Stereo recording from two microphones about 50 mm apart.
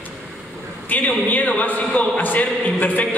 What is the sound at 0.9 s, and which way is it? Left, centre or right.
A man's voice, left.